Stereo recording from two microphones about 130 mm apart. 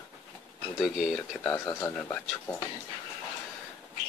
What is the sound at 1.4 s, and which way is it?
Speech, 20° left (ahead or behind).